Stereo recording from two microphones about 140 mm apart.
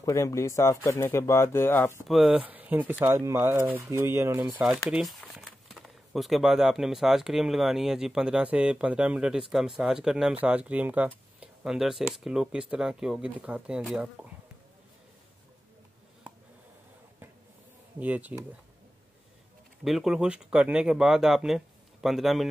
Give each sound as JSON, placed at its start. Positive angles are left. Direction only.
{"t": 0.0, "sound": "speech", "side_deg": 20}
{"t": 2.0, "sound": "speech", "side_deg": 0}
{"t": 3.1, "sound": "speech", "side_deg": -25}
{"t": 4.8, "sound": "speech", "side_deg": 0}
{"t": 17.9, "sound": "speech", "side_deg": -10}
{"t": 19.8, "sound": "speech", "side_deg": 0}